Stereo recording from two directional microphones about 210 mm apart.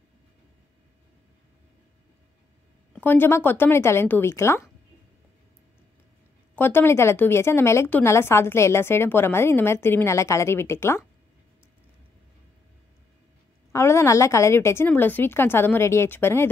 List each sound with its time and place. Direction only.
2.9 s a woman's voice: 10° left (ahead or behind)
6.5 s a woman's voice: 10° left (ahead or behind)
13.7 s a woman's voice: 15° left (ahead or behind)